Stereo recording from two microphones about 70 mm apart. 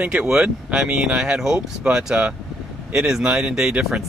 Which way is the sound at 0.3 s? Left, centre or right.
Centre.